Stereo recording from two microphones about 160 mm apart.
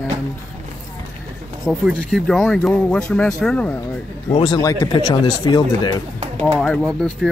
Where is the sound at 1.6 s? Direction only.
Centre (ahead or behind).